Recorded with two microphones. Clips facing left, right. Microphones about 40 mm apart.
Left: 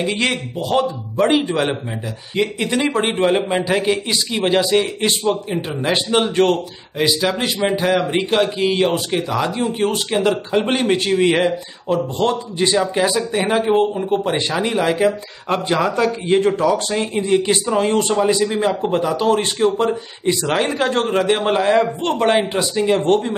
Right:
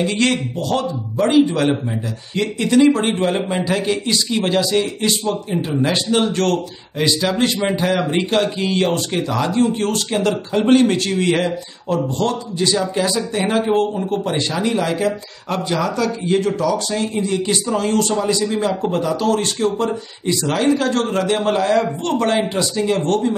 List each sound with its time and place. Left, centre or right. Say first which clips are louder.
0.0 s speech: right 2 dB; centre
7.0 s speech: right 1 dB; centre; by 23.3 s left